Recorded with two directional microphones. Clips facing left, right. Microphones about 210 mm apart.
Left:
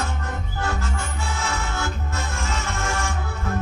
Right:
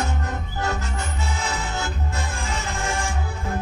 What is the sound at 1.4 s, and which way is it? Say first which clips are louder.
Music: left 1 dB; 20° right (ahead or behind).